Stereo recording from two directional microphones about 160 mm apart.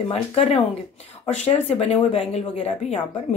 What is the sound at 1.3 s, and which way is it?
Speech, 45° left (ahead or behind).